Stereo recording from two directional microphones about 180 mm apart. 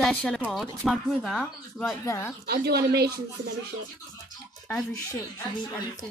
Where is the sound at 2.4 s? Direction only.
60° right (ahead or behind).